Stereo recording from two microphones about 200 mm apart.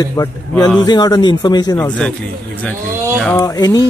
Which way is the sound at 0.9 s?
20° left (ahead or behind).